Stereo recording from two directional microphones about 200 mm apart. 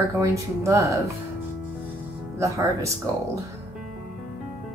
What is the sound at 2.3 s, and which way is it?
Speech, 15° right (ahead or behind).